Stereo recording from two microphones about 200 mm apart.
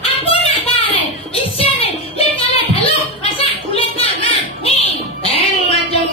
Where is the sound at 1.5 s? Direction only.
30° left (ahead or behind).